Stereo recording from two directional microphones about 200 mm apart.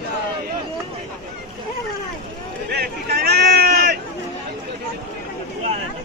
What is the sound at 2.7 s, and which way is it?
Speech, 55° right (ahead or behind).